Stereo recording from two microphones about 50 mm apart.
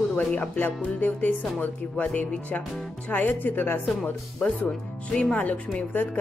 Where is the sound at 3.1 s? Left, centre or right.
Left.